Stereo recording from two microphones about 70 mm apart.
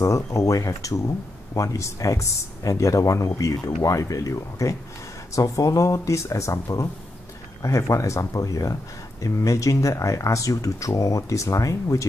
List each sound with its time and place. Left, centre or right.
0.0 s speech: left